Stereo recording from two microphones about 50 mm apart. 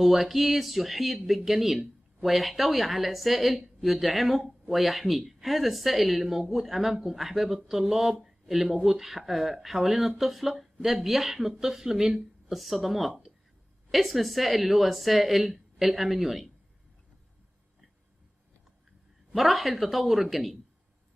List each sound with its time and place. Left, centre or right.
0.0 s speech: centre
19.3 s speech: centre